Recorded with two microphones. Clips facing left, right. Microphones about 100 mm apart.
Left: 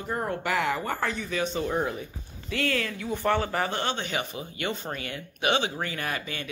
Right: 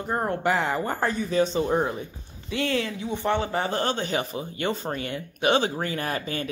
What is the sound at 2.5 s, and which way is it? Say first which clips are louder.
Speech: right 2 dB; 20° right (ahead or behind).